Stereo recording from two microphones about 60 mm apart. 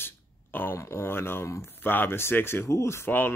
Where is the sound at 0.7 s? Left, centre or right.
Left.